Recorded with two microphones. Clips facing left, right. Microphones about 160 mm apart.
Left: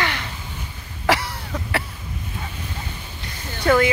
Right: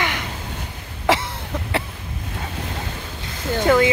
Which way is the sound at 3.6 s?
20° right (ahead or behind).